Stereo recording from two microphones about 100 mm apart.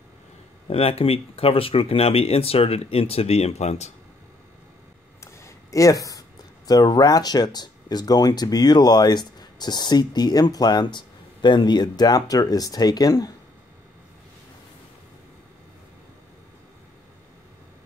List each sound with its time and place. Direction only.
0.7 s speech: 80° left
5.2 s speech: 30° left (ahead or behind)